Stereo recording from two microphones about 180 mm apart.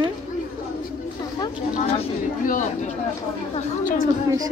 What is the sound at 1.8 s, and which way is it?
Speech, 45° left (ahead or behind).